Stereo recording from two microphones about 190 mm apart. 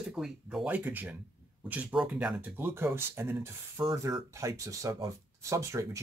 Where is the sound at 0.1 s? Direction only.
5° right (ahead or behind).